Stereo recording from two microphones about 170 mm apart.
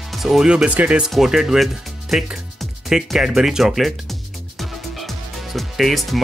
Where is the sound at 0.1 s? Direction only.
Centre (ahead or behind).